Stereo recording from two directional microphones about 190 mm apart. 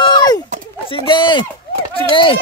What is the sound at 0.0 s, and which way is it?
Chop, 20° left (ahead or behind).